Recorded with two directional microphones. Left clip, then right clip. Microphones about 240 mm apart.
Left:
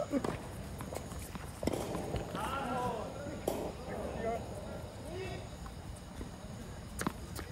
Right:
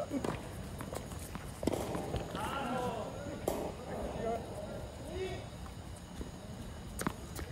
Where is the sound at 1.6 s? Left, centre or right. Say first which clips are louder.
Right 1 dB; left.